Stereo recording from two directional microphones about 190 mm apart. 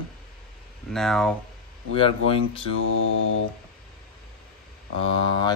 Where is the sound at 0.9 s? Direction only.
Centre (ahead or behind).